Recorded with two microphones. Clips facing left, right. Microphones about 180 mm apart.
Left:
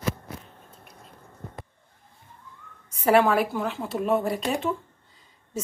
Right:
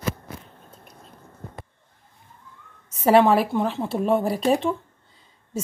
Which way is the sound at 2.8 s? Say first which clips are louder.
Right 3 dB; 25° right (ahead or behind).